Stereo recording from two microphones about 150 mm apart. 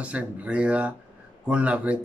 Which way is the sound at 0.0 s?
10° right (ahead or behind).